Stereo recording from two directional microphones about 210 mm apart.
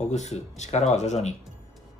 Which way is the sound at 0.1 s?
35° left (ahead or behind).